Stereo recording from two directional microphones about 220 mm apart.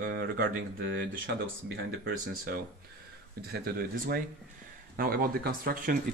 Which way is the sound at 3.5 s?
45° right (ahead or behind).